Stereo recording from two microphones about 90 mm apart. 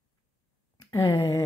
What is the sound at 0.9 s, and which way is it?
Speech, 35° left (ahead or behind).